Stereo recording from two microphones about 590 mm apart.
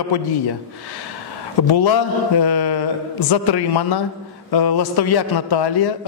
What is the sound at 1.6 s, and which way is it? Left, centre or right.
A man's voice, left.